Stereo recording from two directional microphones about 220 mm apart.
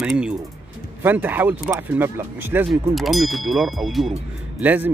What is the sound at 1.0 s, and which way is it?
Speech, 10° right (ahead or behind).